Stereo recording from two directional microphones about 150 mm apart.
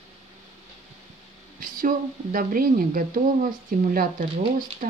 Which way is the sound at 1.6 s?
65° right (ahead or behind).